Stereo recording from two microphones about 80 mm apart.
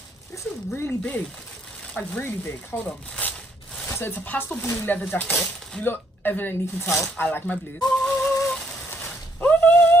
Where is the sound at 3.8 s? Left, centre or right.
Left.